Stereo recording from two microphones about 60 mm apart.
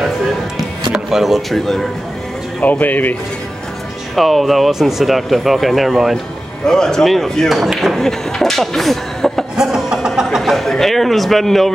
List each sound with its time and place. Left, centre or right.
1.1 s speech: centre
2.6 s speech: left
4.1 s speech: centre
6.6 s speech: centre
9.6 s a sound: centre
10.5 s a man's voice: centre